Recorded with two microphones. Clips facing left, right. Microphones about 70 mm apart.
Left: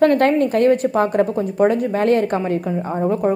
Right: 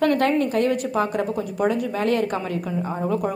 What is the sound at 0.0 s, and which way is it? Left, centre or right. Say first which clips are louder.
A woman's voice: left 5 dB; left.